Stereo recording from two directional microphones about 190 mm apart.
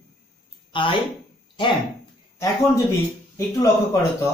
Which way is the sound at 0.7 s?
25° left (ahead or behind).